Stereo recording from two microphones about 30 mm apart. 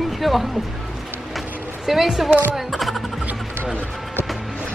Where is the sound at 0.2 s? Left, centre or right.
Centre.